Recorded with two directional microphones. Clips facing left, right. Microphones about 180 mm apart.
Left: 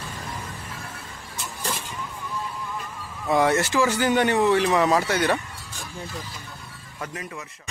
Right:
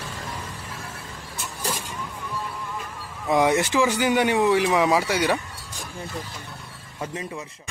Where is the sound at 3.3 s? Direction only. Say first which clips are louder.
Right 1 dB; 15° right (ahead or behind).